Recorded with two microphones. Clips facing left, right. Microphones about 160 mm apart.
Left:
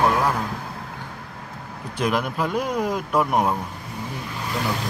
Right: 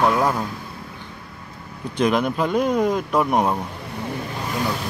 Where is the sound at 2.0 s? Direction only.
5° left (ahead or behind).